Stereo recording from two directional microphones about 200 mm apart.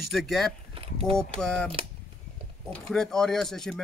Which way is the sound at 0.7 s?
25° right (ahead or behind).